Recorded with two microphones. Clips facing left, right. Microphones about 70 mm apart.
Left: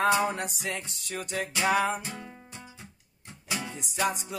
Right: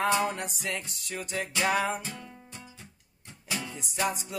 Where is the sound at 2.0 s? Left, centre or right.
Left.